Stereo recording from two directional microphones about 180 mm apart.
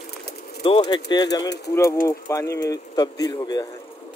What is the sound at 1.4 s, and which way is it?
Speech, 70° left (ahead or behind).